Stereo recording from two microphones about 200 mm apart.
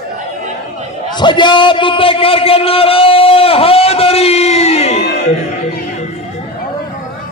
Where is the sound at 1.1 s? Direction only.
25° left (ahead or behind).